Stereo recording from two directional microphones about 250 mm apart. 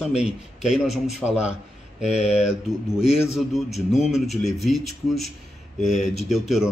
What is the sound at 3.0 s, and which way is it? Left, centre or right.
Speech, left.